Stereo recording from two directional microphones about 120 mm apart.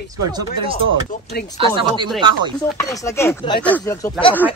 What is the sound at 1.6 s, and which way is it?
Speech, 45° right (ahead or behind).